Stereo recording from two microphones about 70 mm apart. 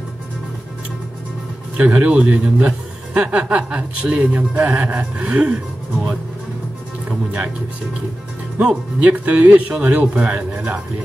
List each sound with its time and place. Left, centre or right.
1.8 s a man's voice: centre
7.1 s speech: centre
8.5 s speech: centre